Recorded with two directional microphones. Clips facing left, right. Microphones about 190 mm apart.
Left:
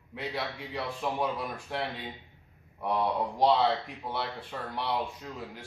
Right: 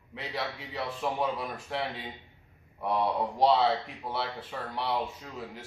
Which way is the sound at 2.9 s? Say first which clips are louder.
Even; centre (ahead or behind).